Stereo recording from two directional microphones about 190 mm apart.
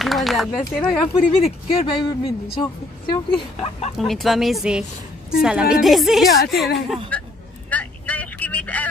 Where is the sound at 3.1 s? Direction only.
25° left (ahead or behind).